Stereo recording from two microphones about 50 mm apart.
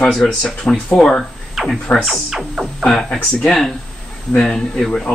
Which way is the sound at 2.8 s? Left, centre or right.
Centre.